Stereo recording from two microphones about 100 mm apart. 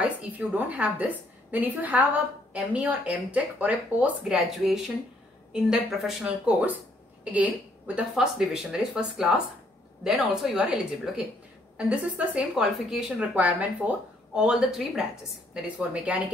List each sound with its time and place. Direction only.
0.6 s a woman's voice: 15° right (ahead or behind)